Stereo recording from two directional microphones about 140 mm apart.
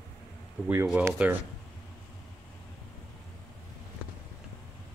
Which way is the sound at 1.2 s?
10° right (ahead or behind).